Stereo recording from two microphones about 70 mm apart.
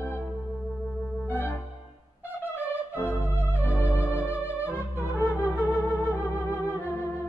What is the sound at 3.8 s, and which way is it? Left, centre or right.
Music, left.